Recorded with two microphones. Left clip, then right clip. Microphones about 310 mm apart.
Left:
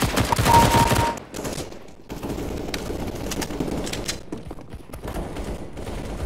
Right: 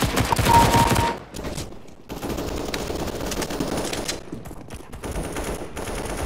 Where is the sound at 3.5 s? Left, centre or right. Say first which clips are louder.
Right 2 dB; right.